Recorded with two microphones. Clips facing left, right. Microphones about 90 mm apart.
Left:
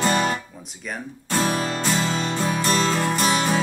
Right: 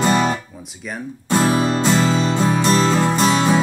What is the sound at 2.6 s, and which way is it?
Music, 20° right (ahead or behind).